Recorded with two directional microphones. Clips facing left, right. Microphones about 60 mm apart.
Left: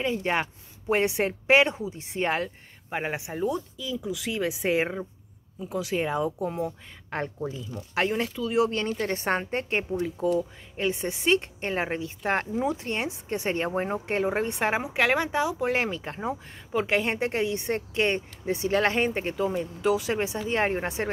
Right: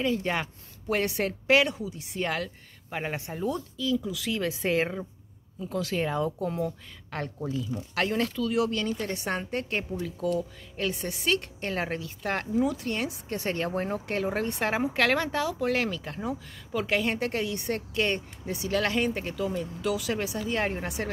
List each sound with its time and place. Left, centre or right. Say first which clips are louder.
0.0 s a woman's voice: left 1 dB; left